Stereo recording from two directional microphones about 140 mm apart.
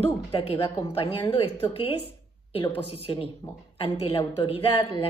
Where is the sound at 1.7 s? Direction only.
45° left (ahead or behind).